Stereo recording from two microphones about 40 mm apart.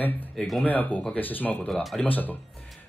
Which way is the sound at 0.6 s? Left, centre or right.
Left.